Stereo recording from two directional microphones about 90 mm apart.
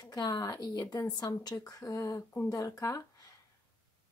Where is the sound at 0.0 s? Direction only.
50° left (ahead or behind).